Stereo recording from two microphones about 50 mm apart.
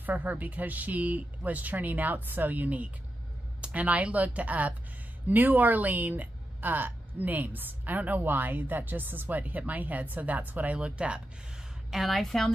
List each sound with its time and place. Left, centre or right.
0.0 s a woman's voice: right
10.8 s speech: right
11.9 s a woman's voice: centre